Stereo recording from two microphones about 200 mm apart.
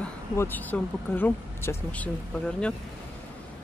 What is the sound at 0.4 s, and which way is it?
Speech, 10° left (ahead or behind).